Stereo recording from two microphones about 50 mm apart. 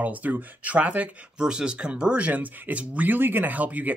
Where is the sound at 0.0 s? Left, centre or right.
Right.